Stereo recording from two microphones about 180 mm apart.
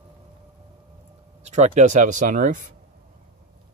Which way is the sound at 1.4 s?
40° right (ahead or behind).